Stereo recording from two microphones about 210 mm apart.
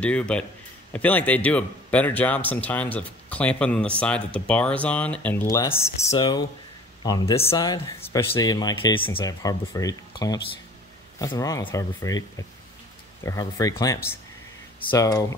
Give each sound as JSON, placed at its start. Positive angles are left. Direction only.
{"t": 0.0, "sound": "a man's voice", "side_deg": 5}